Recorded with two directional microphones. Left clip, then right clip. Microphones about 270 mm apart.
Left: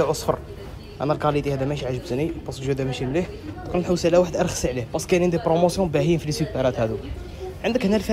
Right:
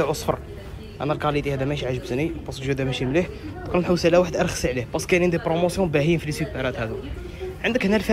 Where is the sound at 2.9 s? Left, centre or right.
Left.